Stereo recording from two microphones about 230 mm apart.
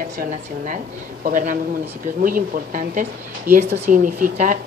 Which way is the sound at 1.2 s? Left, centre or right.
Right.